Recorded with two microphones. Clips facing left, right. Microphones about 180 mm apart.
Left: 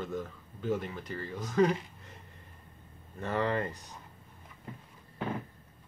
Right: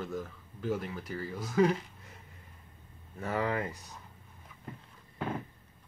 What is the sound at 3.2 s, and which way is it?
Speech, 5° right (ahead or behind).